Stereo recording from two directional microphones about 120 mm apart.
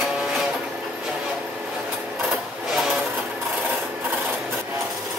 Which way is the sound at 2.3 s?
5° right (ahead or behind).